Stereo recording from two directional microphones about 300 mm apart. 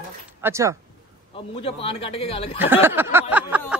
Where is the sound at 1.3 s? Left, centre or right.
Centre.